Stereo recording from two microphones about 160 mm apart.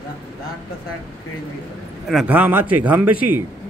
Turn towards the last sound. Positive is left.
turn(degrees=-10)  # may be behind; listen again after turning